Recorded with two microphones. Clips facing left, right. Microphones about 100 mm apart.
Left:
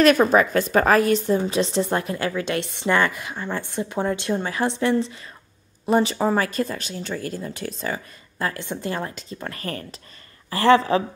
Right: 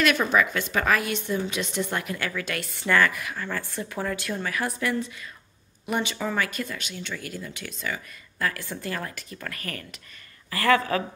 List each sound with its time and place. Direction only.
0.0 s a woman's voice: 40° left (ahead or behind)